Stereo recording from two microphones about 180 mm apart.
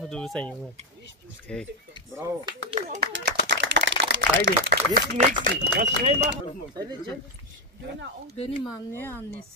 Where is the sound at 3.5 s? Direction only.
75° right (ahead or behind); by 4.2 s 90° right.